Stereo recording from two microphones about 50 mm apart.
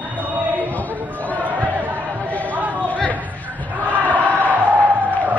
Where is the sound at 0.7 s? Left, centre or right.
Left.